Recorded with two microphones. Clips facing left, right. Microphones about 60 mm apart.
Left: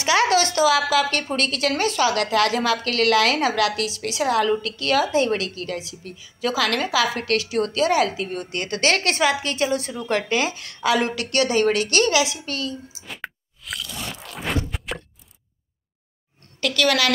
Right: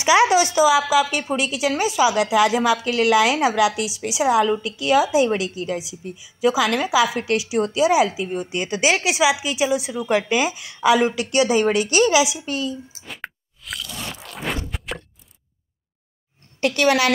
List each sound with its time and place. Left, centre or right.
0.0 s a woman's voice: centre
13.0 s crunch: centre
16.5 s a woman's voice: right